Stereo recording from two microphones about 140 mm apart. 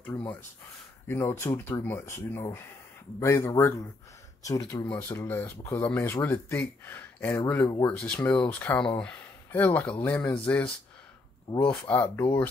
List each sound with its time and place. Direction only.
1.0 s speech: 15° left (ahead or behind)
7.6 s speech: 25° left (ahead or behind)
7.9 s speech: 5° left (ahead or behind)
11.9 s speech: 15° left (ahead or behind)